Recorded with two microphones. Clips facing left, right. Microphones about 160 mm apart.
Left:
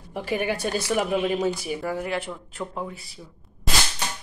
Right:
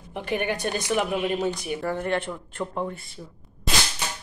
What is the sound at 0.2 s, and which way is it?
A woman's voice, 5° left (ahead or behind).